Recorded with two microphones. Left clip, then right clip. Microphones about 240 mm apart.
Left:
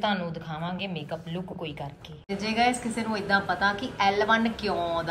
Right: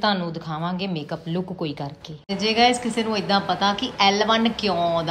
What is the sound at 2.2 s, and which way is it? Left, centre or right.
A woman's voice, centre.